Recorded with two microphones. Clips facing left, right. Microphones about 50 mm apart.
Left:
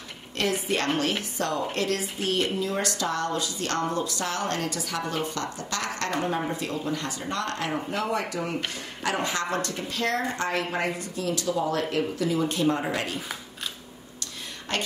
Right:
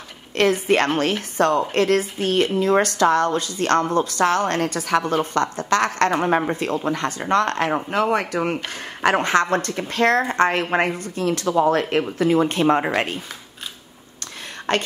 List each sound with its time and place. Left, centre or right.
0.4 s a woman's voice: right
14.7 s a woman's voice: right